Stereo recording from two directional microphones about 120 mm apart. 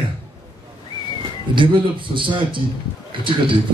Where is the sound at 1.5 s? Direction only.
40° right (ahead or behind).